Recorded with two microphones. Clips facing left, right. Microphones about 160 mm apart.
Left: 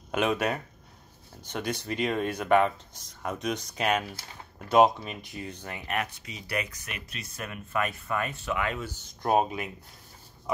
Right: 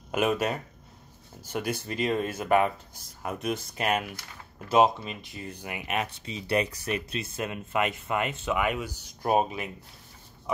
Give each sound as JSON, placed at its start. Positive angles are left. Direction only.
{"t": 0.1, "sound": "speech", "side_deg": -5}
{"t": 5.9, "sound": "speech", "side_deg": -30}